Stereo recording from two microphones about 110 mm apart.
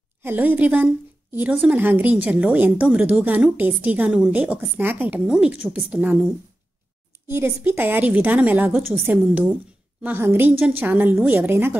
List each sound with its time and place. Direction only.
0.2 s a woman's voice: 20° right (ahead or behind)
7.2 s a woman's voice: 25° right (ahead or behind)